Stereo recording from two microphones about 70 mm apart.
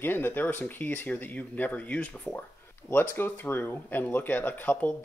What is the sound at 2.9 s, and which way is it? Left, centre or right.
Speech, left.